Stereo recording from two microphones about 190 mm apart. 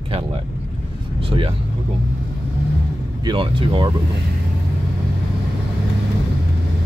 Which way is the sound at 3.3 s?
25° right (ahead or behind).